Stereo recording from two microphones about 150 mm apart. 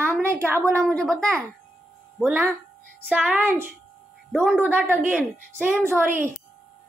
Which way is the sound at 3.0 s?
10° right (ahead or behind).